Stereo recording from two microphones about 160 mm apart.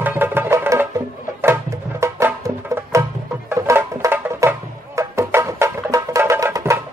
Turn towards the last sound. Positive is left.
turn(degrees=-15)  # may be behind; listen again after turning